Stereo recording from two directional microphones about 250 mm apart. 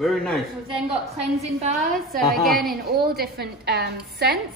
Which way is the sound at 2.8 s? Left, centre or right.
Right.